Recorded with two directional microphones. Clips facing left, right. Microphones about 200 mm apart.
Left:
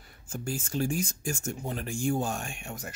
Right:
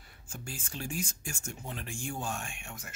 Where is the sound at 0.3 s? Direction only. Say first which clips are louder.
Left 10 dB; 40° left (ahead or behind).